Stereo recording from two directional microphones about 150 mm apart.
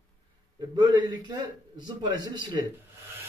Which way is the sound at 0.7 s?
30° right (ahead or behind).